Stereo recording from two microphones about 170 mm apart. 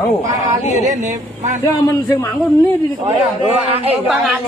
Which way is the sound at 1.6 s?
20° left (ahead or behind).